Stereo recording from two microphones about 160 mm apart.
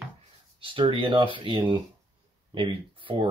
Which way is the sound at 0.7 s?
30° right (ahead or behind).